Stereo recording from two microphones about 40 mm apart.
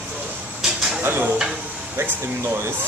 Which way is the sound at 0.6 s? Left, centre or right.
Centre.